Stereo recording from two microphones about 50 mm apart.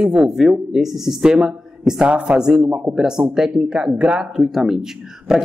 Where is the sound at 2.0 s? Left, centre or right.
Right.